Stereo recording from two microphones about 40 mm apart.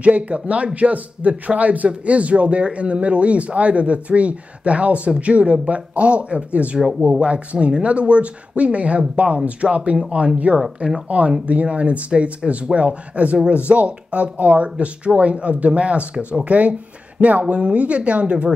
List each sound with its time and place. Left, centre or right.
0.0 s a man's voice: right